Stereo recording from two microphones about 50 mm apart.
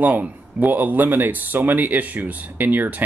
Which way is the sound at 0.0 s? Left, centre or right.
Right.